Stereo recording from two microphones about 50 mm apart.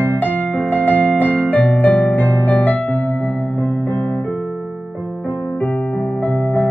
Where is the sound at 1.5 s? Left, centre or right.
Left.